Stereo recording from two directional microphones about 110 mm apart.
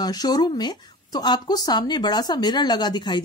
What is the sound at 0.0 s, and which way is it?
Speech, 35° left (ahead or behind).